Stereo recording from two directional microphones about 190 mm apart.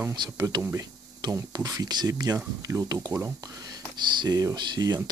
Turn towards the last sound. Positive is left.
turn(degrees=-20)  # may be behind; listen again after turning